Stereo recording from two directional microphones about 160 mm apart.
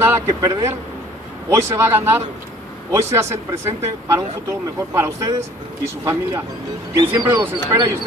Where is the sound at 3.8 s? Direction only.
15° right (ahead or behind).